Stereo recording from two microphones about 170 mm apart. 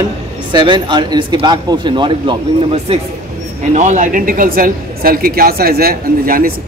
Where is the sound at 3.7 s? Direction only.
45° right (ahead or behind).